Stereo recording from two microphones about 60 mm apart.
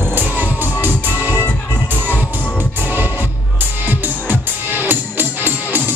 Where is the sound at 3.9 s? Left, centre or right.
Right.